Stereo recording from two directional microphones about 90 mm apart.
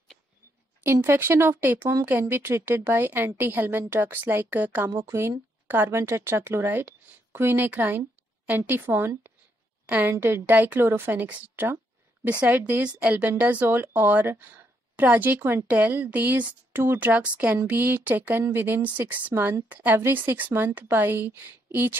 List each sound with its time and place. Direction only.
0.9 s a woman's voice: 30° right (ahead or behind)
4.8 s a woman's voice: 30° right (ahead or behind)